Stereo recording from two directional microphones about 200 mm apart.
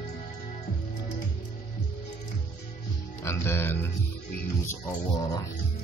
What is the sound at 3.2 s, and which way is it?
Speech, 15° left (ahead or behind).